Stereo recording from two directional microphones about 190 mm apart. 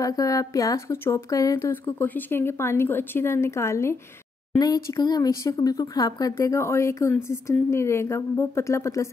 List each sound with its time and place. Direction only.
0.0 s speech: 20° left (ahead or behind)